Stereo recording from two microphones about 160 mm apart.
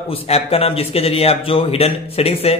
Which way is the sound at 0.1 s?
40° left (ahead or behind).